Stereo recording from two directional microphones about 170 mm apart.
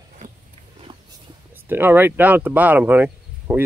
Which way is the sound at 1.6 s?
10° right (ahead or behind).